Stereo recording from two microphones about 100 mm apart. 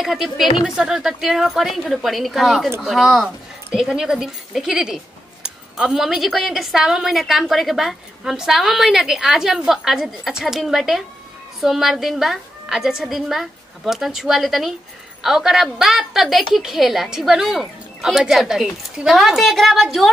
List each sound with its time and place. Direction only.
0.0 s speech: centre (ahead or behind)